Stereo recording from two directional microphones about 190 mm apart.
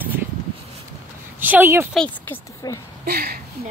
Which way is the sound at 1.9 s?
10° left (ahead or behind).